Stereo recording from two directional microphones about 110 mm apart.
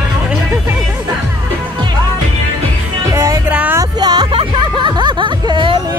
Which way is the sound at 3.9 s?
40° right (ahead or behind).